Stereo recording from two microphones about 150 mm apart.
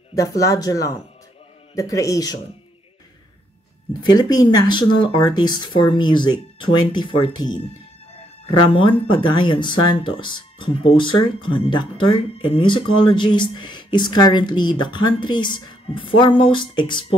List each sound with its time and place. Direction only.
0.1 s speech: 20° left (ahead or behind)
4.0 s speech: 25° left (ahead or behind)